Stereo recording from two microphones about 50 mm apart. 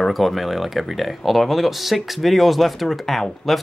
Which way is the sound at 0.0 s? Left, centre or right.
Centre.